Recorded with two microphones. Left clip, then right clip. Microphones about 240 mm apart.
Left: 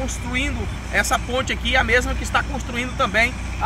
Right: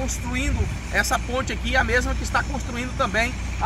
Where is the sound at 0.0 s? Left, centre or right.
Centre.